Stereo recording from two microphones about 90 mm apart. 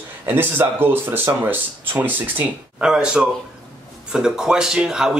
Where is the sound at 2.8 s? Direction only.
10° right (ahead or behind).